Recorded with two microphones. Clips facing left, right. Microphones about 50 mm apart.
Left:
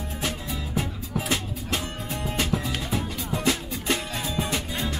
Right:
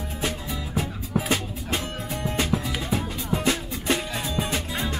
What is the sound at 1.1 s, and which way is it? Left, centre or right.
Music, centre.